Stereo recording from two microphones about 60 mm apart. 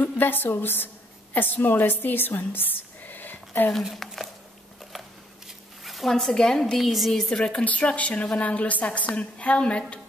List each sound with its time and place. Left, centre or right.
0.0 s a woman's voice: left
3.8 s speech: centre
5.9 s a woman's voice: centre
7.2 s a woman's voice: centre